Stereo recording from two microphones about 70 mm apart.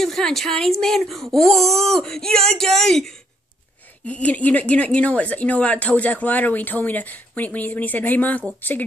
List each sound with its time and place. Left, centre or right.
0.0 s speech: centre
4.0 s a woman's voice: left